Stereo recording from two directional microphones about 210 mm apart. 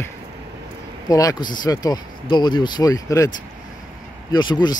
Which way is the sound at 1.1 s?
15° left (ahead or behind).